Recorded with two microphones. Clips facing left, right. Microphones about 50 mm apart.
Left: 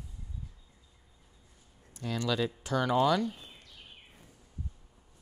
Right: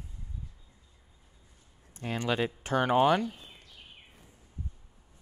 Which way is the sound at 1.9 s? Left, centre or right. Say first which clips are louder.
Right 1 dB; right.